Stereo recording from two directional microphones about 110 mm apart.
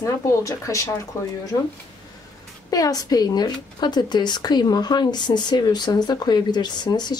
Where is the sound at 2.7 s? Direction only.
35° left (ahead or behind).